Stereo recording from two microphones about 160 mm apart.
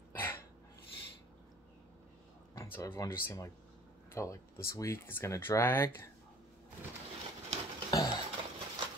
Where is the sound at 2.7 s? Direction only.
15° left (ahead or behind).